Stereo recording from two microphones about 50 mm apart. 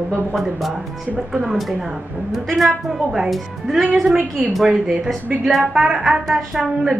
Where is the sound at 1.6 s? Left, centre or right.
Centre.